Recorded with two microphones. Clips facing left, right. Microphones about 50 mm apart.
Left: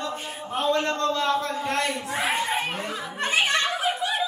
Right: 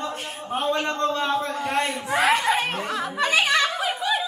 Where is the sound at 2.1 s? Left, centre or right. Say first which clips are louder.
Right 8 dB; right.